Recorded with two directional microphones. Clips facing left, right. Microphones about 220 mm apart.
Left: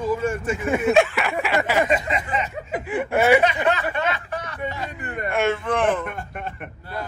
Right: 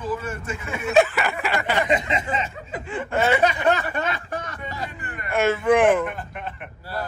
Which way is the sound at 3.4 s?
40° right (ahead or behind).